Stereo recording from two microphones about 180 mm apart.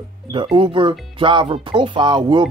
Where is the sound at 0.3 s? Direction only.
30° right (ahead or behind).